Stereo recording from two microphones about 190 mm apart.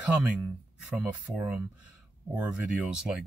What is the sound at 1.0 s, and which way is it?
Speech, 5° right (ahead or behind).